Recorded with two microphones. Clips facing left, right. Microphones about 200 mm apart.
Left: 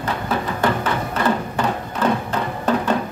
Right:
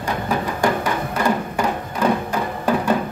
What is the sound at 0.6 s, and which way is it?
Music, 10° right (ahead or behind).